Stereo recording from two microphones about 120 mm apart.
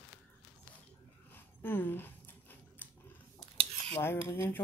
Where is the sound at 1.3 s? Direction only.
15° left (ahead or behind).